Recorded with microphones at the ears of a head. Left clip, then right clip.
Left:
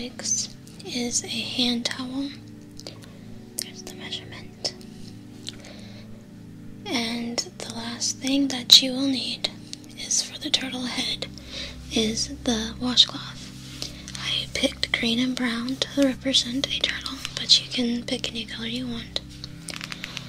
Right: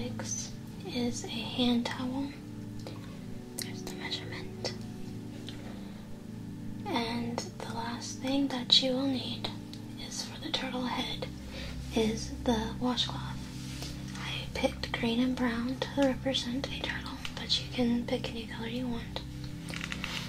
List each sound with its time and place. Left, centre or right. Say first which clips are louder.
0.2 s speech: left 10 dB; left
6.9 s a sound: left 5 dB; left
8.0 s speech: left 10 dB; left